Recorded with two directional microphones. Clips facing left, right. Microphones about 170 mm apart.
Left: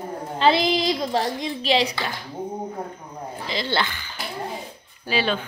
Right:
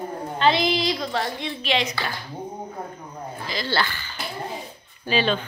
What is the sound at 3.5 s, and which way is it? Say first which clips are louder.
Speech: left 1 dB; 25° left (ahead or behind).